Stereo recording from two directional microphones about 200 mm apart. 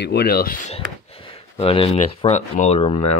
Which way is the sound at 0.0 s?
55° left (ahead or behind).